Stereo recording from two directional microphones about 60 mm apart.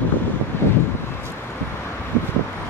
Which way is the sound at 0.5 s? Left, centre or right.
Left.